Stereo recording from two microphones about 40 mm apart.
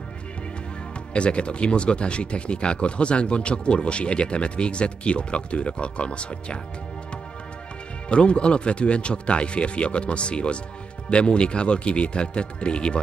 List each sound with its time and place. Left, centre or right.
1.1 s speech: left
8.1 s speech: left